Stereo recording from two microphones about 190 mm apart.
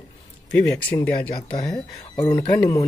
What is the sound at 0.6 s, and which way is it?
Speech, 5° left (ahead or behind).